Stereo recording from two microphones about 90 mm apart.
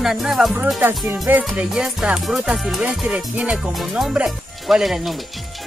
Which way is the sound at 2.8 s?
10° right (ahead or behind).